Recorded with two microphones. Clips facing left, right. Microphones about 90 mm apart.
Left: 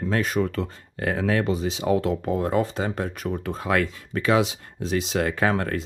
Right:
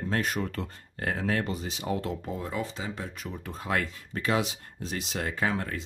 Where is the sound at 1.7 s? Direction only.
90° left.